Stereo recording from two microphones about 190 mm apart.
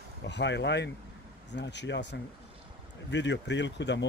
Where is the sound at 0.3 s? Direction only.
65° left (ahead or behind).